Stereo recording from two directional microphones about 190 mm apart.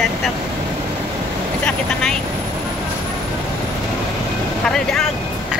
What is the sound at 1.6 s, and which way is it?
Vehicle, 5° left (ahead or behind).